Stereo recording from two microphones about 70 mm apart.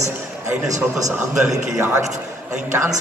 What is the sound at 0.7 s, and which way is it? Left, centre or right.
Speech, right.